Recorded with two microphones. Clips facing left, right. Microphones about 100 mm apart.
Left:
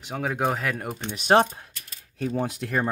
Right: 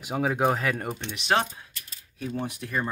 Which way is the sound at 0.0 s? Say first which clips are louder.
Right 2 dB; 5° right (ahead or behind).